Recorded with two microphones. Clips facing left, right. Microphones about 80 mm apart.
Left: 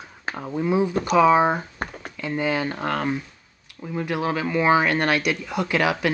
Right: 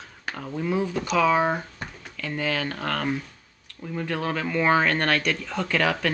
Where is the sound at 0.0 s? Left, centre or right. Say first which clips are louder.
Left 3 dB; centre.